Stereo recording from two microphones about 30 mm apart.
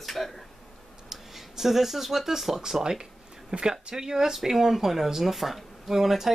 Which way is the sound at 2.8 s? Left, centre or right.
Centre.